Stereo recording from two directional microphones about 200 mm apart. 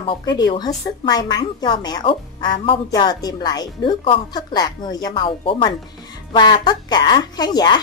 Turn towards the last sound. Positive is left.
turn(degrees=20)  # may be behind; listen again after turning